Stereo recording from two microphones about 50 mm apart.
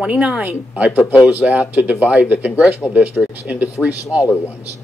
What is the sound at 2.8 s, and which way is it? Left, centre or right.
Speech, left.